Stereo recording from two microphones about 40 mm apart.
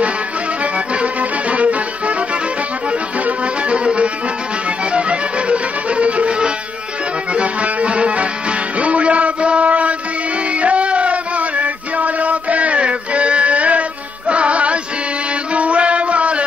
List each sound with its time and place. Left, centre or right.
1.5 s music: right
3.6 s music: right
7.3 s music: right